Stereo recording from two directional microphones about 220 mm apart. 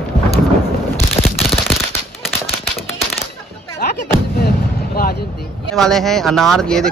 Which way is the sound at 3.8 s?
40° left (ahead or behind).